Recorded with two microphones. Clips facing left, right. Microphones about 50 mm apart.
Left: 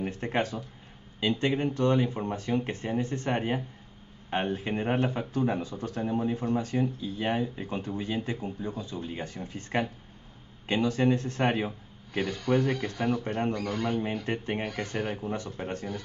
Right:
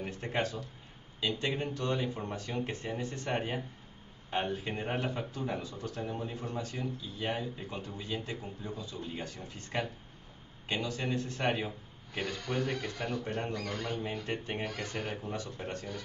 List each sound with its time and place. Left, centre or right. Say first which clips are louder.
0.2 s speech: left 3 dB; left
5.9 s speech: left 10 dB; centre
6.6 s speech: left 9 dB; left
13.7 s speech: left 7 dB; centre
14.2 s speech: left 5 dB; left